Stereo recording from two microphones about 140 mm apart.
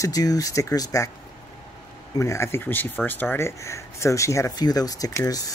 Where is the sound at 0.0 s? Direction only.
25° left (ahead or behind).